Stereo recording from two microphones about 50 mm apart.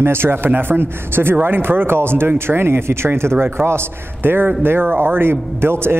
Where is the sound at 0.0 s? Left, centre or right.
Right.